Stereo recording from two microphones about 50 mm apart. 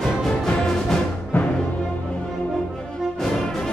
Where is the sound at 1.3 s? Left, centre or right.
Left.